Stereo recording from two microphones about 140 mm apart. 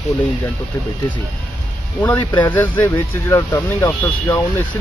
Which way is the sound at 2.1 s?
30° left (ahead or behind).